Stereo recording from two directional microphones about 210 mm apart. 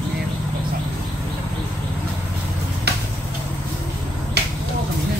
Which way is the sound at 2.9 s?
50° right (ahead or behind).